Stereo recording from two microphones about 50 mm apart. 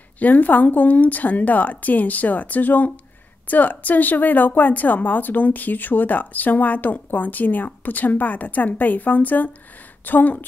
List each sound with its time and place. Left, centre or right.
0.2 s a woman's voice: left